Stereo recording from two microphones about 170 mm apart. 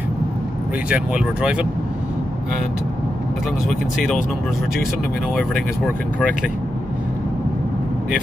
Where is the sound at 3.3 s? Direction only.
Centre (ahead or behind).